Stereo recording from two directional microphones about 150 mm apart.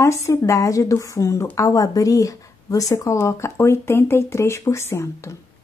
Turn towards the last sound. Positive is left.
turn(degrees=20)  # may be behind; listen again after turning